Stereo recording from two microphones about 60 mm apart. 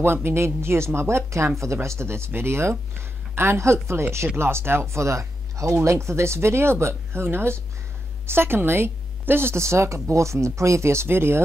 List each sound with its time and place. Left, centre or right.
0.0 s speech: right